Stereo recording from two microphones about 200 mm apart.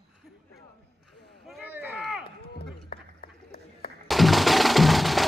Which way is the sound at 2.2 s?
50° left (ahead or behind).